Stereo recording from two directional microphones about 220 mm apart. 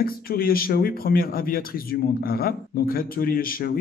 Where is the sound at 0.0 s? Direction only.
40° left (ahead or behind).